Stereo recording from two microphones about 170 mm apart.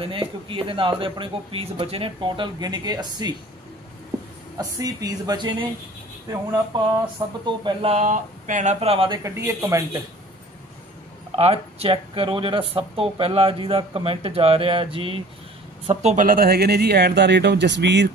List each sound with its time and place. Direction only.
0.0 s speech: 30° right (ahead or behind)
4.6 s speech: 20° right (ahead or behind)
7.4 s speech: 30° right (ahead or behind)
9.2 s speech: 15° right (ahead or behind)
11.3 s speech: 35° right (ahead or behind); by 18.1 s 90° right